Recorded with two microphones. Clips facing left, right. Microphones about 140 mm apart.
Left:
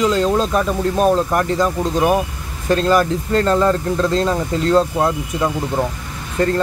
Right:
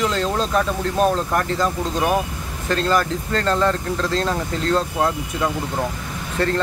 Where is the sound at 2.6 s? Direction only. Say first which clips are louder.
Left 5 dB; 15° left (ahead or behind).